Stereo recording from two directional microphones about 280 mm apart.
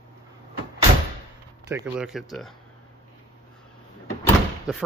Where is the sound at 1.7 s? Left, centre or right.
Centre.